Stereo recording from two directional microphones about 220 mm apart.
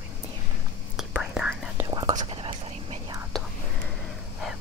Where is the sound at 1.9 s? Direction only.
15° right (ahead or behind).